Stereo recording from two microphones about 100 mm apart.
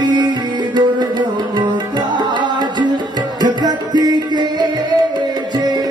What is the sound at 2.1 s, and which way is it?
Tabla, 50° right (ahead or behind).